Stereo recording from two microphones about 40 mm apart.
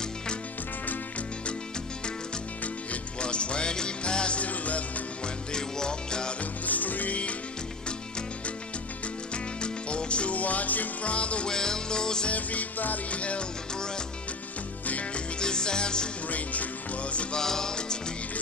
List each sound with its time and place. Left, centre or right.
3.2 s music: left
5.5 s music: centre
6.6 s music: left
9.3 s music: left
11.1 s music: left
11.4 s music: centre
12.3 s music: left
13.1 s music: left
14.9 s music: left
15.3 s music: centre
16.3 s music: left
17.4 s music: centre